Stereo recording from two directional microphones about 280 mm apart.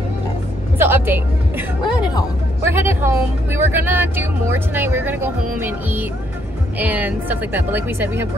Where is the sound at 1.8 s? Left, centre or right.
Centre.